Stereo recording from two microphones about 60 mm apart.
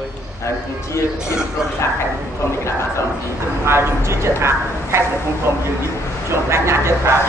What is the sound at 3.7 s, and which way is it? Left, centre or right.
Speech, right.